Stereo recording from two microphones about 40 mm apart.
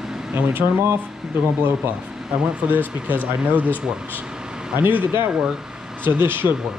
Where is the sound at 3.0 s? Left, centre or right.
Right.